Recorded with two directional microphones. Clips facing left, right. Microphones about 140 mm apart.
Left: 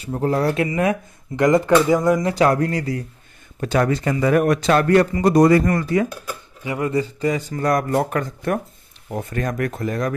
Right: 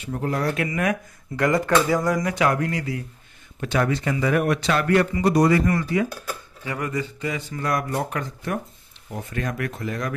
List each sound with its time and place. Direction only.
0.0 s a man's voice: 30° left (ahead or behind)
6.6 s speech: 20° left (ahead or behind)
6.9 s a man's voice: 35° left (ahead or behind)